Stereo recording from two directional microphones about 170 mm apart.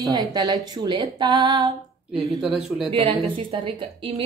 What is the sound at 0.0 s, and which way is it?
Speech, 25° right (ahead or behind).